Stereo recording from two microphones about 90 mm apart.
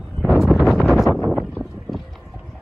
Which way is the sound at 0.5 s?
Centre (ahead or behind).